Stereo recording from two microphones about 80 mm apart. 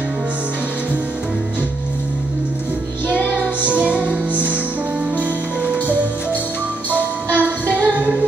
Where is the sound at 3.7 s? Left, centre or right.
Centre.